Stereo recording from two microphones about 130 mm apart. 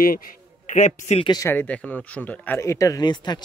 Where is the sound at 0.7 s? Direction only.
70° left (ahead or behind).